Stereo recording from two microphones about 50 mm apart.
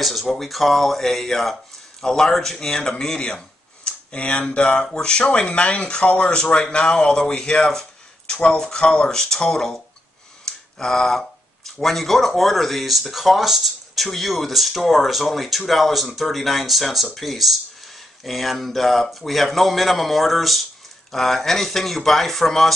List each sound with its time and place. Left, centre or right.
0.0 s speech: centre